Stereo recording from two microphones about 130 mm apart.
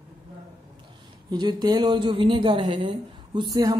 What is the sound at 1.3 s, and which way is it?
A woman's voice, 35° right (ahead or behind).